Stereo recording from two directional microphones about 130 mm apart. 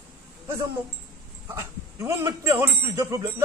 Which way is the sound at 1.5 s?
20° right (ahead or behind).